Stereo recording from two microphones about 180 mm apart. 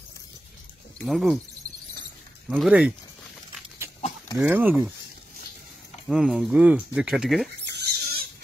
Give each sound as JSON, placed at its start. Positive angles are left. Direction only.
{"t": 1.0, "sound": "speech", "side_deg": 0}
{"t": 2.5, "sound": "speech", "side_deg": 0}
{"t": 4.4, "sound": "speech", "side_deg": -10}
{"t": 6.0, "sound": "speech", "side_deg": 0}
{"t": 7.6, "sound": "rodents", "side_deg": -65}